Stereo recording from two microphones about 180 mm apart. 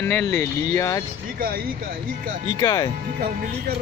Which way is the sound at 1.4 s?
55° right (ahead or behind).